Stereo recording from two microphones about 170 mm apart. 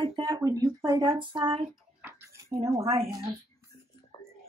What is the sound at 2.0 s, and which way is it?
Bathtub, 15° right (ahead or behind).